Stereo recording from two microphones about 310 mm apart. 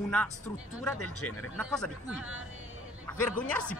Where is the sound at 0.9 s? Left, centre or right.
Left.